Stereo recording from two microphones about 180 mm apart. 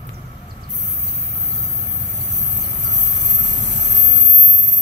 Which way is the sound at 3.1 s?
75° right (ahead or behind).